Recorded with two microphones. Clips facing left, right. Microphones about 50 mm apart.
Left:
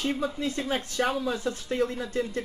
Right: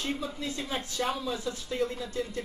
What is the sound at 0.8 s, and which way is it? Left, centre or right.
Speech, left.